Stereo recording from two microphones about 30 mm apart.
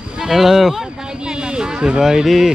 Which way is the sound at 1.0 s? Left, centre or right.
Right.